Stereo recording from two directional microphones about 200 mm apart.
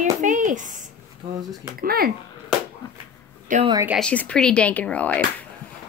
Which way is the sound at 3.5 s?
40° right (ahead or behind).